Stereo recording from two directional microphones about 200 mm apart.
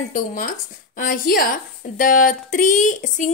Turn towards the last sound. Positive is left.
turn(degrees=40)  # may be behind; listen again after turning